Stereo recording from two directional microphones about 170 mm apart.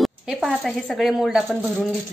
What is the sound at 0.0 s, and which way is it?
Speech, centre (ahead or behind).